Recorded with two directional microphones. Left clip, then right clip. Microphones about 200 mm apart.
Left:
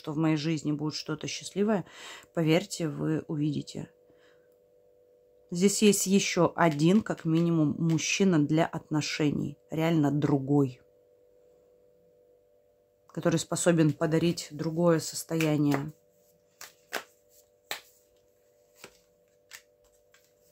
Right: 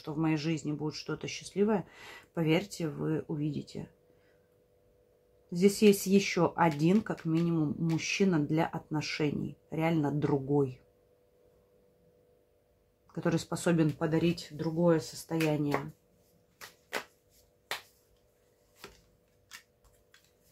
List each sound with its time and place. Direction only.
0.0 s speech: 30° left (ahead or behind)
5.5 s speech: 30° left (ahead or behind)
13.0 s speech: 30° left (ahead or behind)